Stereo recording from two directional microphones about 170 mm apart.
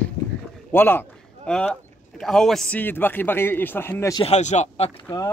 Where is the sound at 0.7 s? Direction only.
10° left (ahead or behind).